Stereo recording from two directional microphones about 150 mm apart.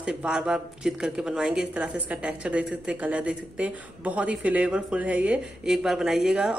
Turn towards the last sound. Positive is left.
turn(degrees=-5)  # may be behind; listen again after turning